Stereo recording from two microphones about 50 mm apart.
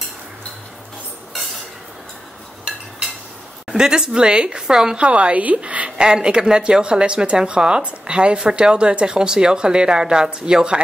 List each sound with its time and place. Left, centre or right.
2.7 s a sound: centre
3.6 s a woman's voice: centre
4.9 s a woman's voice: right
5.9 s a woman's voice: centre